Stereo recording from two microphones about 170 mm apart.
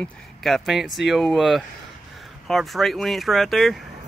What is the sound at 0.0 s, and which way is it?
Speech, centre (ahead or behind).